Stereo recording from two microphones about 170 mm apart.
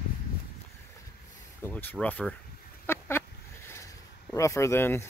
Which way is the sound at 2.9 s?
15° left (ahead or behind).